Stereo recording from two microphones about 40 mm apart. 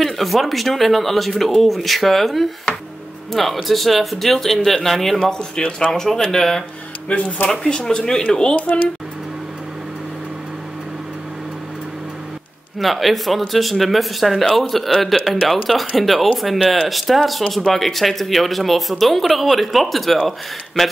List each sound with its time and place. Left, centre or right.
0.0 s speech: centre
3.6 s speech: centre
7.1 s speech: left
7.4 s speech: centre
12.7 s speech: centre
16.6 s speech: centre
16.9 s speech: centre